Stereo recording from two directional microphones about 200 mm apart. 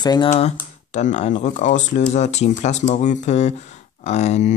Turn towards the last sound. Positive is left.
turn(degrees=35)  # may be behind; listen again after turning